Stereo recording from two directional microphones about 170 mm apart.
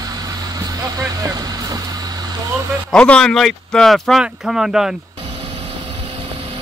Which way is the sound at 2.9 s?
5° left (ahead or behind).